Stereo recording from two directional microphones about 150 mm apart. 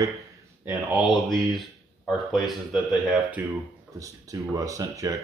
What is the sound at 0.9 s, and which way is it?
Speech, centre (ahead or behind).